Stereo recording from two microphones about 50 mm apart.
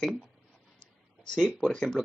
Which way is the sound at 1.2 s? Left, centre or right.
Centre.